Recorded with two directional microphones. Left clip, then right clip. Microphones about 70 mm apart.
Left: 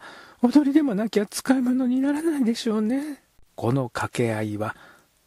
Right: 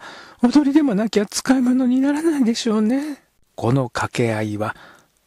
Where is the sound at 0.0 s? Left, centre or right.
Right.